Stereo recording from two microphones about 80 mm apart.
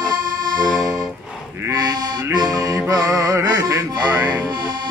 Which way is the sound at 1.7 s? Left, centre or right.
Right.